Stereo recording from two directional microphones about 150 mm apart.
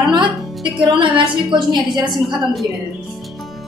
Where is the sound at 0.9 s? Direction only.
30° right (ahead or behind).